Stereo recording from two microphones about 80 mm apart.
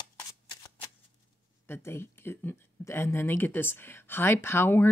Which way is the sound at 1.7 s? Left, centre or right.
Left.